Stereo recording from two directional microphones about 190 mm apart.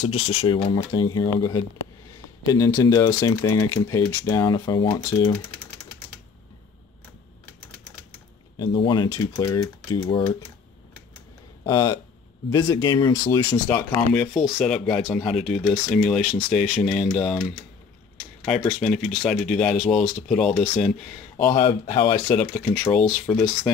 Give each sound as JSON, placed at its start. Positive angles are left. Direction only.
{"t": 0.0, "sound": "speech", "side_deg": 25}
{"t": 8.5, "sound": "speech", "side_deg": 25}
{"t": 11.6, "sound": "speech", "side_deg": 20}
{"t": 21.5, "sound": "speech", "side_deg": 30}
{"t": 23.3, "sound": "speech", "side_deg": 15}